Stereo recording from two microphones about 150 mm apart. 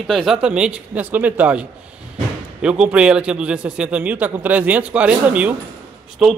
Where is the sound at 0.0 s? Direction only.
Centre (ahead or behind).